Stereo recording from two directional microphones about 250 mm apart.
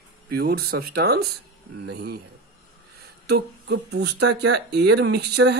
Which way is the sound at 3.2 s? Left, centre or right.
Right.